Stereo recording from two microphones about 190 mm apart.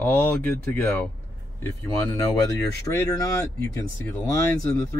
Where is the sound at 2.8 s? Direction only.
15° left (ahead or behind).